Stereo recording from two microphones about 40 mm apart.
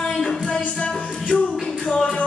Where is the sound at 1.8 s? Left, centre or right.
Centre.